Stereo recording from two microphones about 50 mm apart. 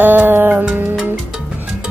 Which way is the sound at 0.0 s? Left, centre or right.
Right.